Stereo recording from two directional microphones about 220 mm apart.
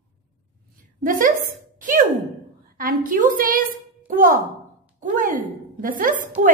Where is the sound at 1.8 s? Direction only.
35° right (ahead or behind).